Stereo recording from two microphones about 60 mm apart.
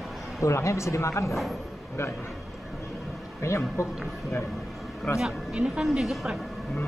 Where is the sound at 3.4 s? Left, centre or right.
Left.